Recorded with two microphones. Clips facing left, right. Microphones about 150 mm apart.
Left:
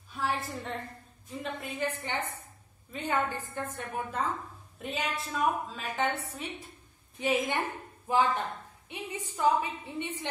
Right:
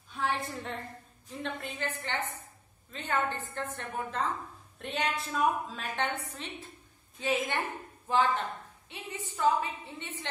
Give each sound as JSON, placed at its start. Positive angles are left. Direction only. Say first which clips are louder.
{"t": 0.1, "sound": "a woman's voice", "louder": "even", "side_deg": 0}